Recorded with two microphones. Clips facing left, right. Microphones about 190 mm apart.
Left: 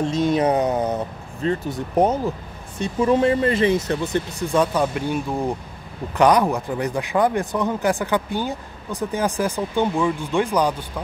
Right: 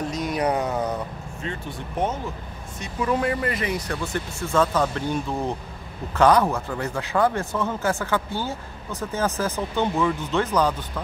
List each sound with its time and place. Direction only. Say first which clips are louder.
0.0 s speech: left 6 dB; 25° left (ahead or behind)
1.4 s speech: left 10 dB; 40° left (ahead or behind)
2.8 s speech: left 6 dB; 25° left (ahead or behind); by 10.9 s 10° left (ahead or behind)